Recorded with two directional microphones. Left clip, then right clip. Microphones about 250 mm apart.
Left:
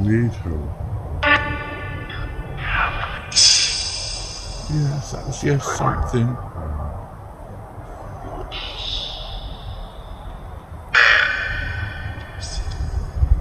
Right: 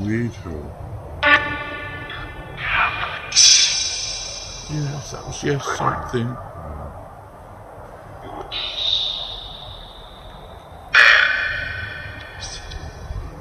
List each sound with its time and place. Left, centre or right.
0.0 s speech: centre
1.2 s music: centre
5.3 s speech: centre
5.9 s speech: centre
8.5 s a sound: centre
10.9 s crow: centre